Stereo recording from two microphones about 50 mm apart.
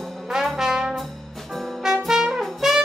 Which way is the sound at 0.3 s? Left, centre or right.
Centre.